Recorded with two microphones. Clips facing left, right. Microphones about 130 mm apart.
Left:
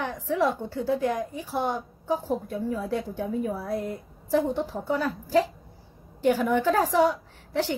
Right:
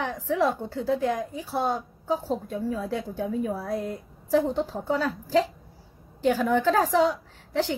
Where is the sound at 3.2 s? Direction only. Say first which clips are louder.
Right 1 dB; 15° right (ahead or behind).